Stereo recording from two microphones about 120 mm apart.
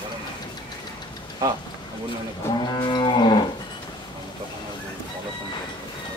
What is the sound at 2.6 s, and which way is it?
Livestock, 35° left (ahead or behind).